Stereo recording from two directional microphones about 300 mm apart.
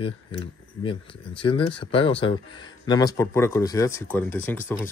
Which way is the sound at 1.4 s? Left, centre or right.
Centre.